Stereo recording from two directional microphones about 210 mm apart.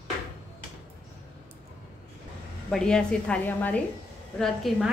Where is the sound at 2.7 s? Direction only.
5° left (ahead or behind).